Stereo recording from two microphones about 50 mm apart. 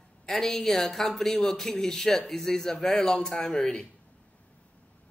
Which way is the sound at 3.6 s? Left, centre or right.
Left.